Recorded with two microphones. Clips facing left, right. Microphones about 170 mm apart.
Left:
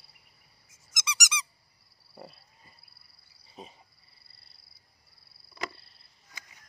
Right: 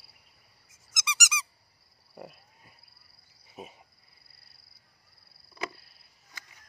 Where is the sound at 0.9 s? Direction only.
5° right (ahead or behind).